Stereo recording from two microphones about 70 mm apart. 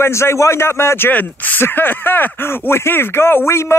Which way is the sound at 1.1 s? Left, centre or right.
Left.